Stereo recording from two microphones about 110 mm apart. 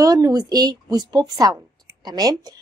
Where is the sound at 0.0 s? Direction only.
35° right (ahead or behind).